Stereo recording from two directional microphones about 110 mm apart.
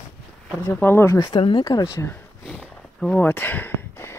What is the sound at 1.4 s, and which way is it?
Speech, 50° left (ahead or behind).